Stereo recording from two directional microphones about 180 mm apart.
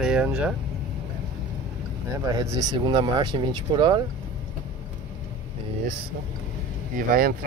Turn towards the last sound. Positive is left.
turn(degrees=-55)  # may be behind; listen again after turning